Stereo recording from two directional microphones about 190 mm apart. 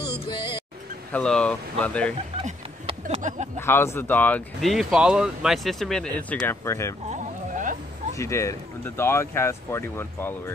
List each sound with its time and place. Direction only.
1.1 s speech: 5° left (ahead or behind)
2.3 s a sound: 30° right (ahead or behind)
3.5 s speech: 10° left (ahead or behind)
7.1 s sheep: 40° right (ahead or behind)
8.2 s speech: 15° left (ahead or behind)